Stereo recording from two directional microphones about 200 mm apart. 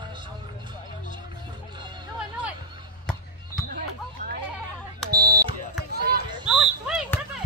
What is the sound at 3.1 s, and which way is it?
Basketball bounce, 5° left (ahead or behind).